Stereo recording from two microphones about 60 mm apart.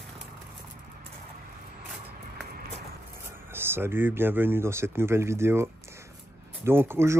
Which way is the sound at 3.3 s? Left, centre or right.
Right.